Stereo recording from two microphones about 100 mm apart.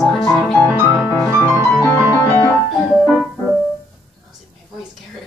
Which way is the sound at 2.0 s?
25° left (ahead or behind).